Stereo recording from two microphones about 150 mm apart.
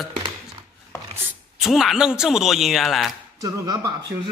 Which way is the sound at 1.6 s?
Centre (ahead or behind).